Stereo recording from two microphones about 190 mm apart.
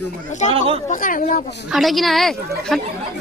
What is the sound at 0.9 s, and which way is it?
Speech, 45° left (ahead or behind).